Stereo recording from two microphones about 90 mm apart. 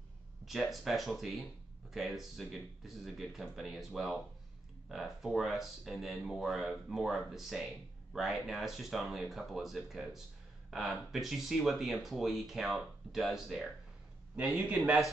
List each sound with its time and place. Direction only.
0.5 s speech: centre (ahead or behind)
14.3 s a man's voice: 15° right (ahead or behind)